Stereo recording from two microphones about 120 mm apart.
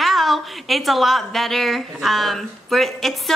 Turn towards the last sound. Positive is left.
turn(degrees=0)  # may be behind; listen again after turning